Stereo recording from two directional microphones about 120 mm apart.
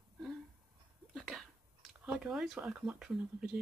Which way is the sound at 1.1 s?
5° left (ahead or behind).